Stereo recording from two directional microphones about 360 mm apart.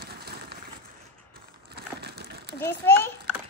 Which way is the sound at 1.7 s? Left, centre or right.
Right.